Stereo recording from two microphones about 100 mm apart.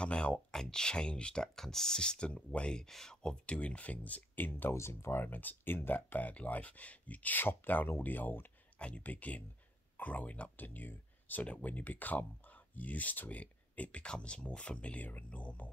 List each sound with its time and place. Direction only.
0.0 s speech: 10° left (ahead or behind)